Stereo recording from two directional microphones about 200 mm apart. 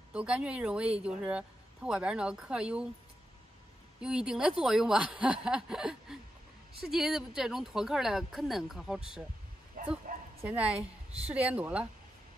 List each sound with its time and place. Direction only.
0.1 s speech: 5° right (ahead or behind)
4.0 s speech: 5° right (ahead or behind)
9.8 s bow-wow: 45° right (ahead or behind)
10.4 s speech: 5° right (ahead or behind)